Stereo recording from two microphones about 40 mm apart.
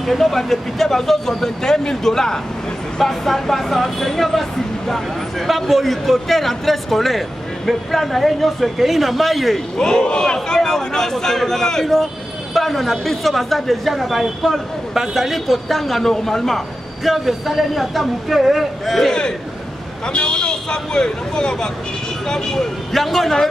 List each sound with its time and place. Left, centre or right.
0.0 s speech: centre
9.8 s speech: centre
11.8 s speech: centre
17.1 s speech: centre
20.1 s speech: left
22.9 s speech: centre